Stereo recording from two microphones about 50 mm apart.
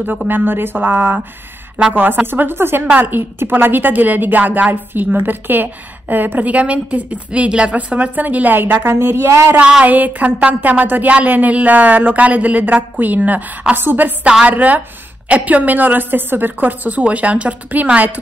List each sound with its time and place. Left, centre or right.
0.3 s a woman's voice: right
8.9 s speech: right
9.8 s a woman's voice: right
14.4 s a woman's voice: right
17.0 s a woman's voice: right